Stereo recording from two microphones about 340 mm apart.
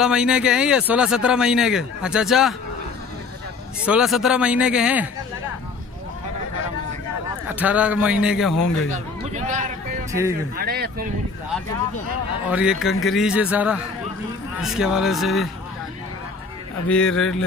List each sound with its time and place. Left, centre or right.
0.0 s a man's voice: centre
3.8 s a man's voice: centre
7.5 s a man's voice: centre
8.9 s a sound: right
10.6 s speech: right
12.4 s a man's voice: centre
16.9 s a man's voice: centre